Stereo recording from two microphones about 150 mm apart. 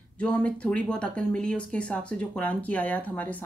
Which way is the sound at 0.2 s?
10° left (ahead or behind).